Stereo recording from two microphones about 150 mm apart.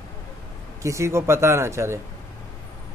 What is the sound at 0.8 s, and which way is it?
A man's voice, 20° right (ahead or behind).